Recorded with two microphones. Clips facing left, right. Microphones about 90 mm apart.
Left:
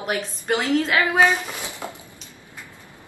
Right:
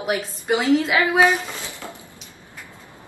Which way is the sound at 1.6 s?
20° left (ahead or behind).